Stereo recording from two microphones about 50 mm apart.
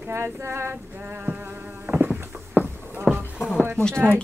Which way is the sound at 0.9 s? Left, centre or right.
Right.